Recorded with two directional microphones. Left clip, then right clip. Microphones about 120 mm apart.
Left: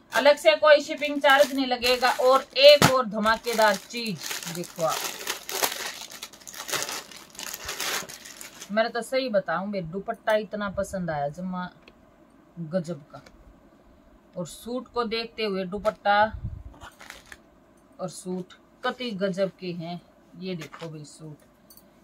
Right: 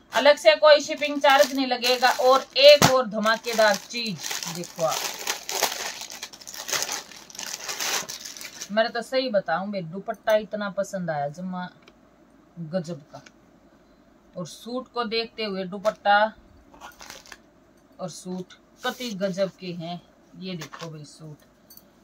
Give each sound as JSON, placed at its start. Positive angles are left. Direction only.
{"t": 0.1, "sound": "speech", "side_deg": 0}
{"t": 4.7, "sound": "crumpling", "side_deg": -5}
{"t": 6.4, "sound": "crushing", "side_deg": -5}
{"t": 7.8, "sound": "pigeon", "side_deg": -5}
{"t": 8.7, "sound": "speech", "side_deg": 0}
{"t": 12.7, "sound": "speech", "side_deg": 5}
{"t": 14.3, "sound": "speech", "side_deg": 0}
{"t": 17.3, "sound": "a sound", "side_deg": -30}
{"t": 17.9, "sound": "speech", "side_deg": 0}
{"t": 20.5, "sound": "speech", "side_deg": -45}